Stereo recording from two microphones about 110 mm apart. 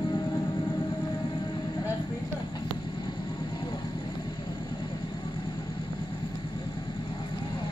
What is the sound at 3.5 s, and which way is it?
Vehicle, 40° left (ahead or behind).